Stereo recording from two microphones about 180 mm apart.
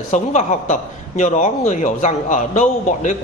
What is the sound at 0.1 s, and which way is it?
A man's voice, 40° left (ahead or behind).